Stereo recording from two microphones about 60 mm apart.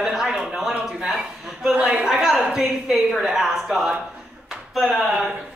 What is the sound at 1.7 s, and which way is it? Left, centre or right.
Speech, right.